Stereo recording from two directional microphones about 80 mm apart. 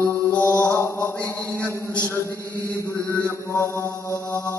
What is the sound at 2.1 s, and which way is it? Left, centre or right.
Chant, left.